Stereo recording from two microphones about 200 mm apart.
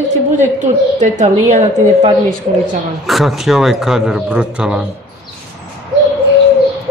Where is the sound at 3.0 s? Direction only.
Centre (ahead or behind).